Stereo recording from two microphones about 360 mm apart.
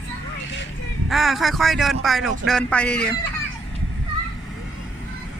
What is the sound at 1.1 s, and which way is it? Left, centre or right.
Speech, centre.